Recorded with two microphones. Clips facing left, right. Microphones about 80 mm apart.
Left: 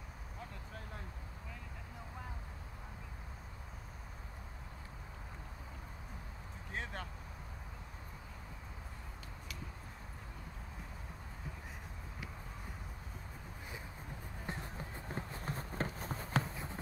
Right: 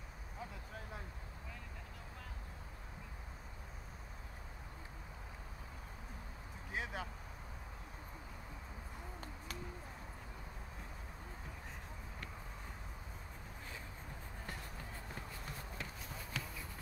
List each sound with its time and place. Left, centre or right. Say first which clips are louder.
0.4 s vehicle: right 1 dB; centre
6.7 s vehicle: right 1 dB; centre
14.4 s run: left 5 dB; left